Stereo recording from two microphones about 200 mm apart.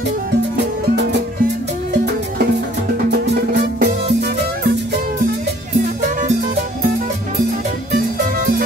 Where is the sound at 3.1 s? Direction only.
50° right (ahead or behind).